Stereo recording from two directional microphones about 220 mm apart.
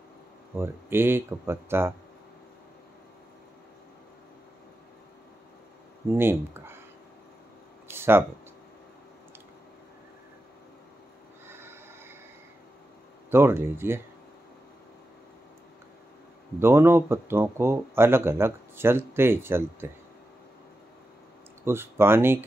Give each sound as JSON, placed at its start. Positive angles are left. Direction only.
{"t": 0.6, "sound": "speech", "side_deg": -10}
{"t": 6.0, "sound": "speech", "side_deg": -10}
{"t": 7.9, "sound": "a sound", "side_deg": -10}
{"t": 11.4, "sound": "a sound", "side_deg": -10}
{"t": 13.3, "sound": "speech", "side_deg": -10}
{"t": 16.5, "sound": "speech", "side_deg": -10}
{"t": 21.6, "sound": "speech", "side_deg": -10}